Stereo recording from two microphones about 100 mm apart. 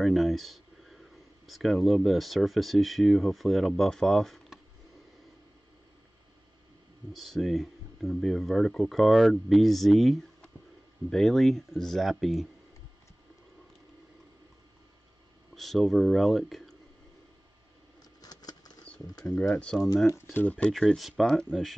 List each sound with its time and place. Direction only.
0.0 s speech: centre (ahead or behind)
7.1 s speech: centre (ahead or behind)
15.5 s speech: centre (ahead or behind)
18.2 s a sound: 40° left (ahead or behind)
18.9 s a sound: 15° left (ahead or behind)
19.3 s speech: 10° left (ahead or behind)